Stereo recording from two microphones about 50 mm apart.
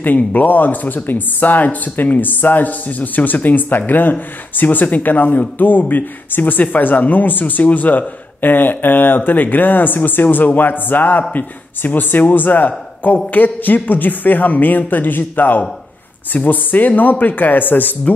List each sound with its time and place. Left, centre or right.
0.0 s speech: left